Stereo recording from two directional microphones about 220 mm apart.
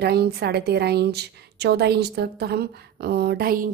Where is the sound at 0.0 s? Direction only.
45° right (ahead or behind).